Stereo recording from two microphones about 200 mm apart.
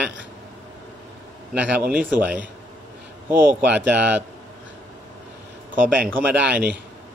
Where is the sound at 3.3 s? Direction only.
10° right (ahead or behind).